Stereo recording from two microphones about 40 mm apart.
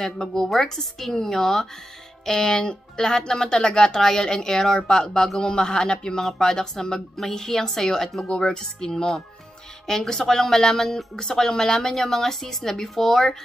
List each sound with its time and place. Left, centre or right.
0.0 s speech: centre